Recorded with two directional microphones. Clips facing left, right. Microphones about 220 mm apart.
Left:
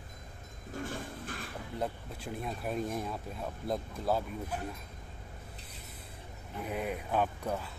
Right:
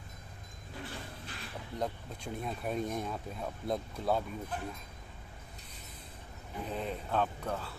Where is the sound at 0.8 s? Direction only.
50° left (ahead or behind).